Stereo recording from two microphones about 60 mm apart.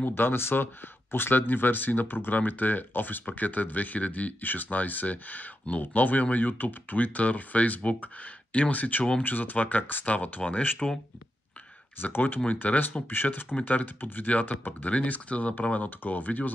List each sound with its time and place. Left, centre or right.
0.0 s speech: left; by 9.2 s centre
9.2 s speech: left
12.0 s speech: left